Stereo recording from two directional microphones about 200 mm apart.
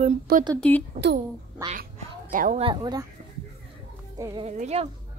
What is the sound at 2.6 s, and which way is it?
Speech, 20° right (ahead or behind).